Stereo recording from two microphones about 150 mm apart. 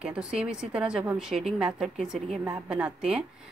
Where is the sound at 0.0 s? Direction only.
5° right (ahead or behind).